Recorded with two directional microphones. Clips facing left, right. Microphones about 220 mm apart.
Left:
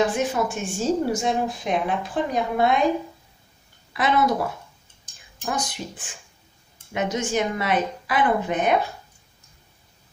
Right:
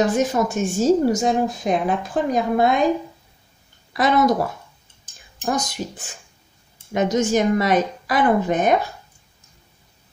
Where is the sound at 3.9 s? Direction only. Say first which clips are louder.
Right 4 dB; 40° right (ahead or behind).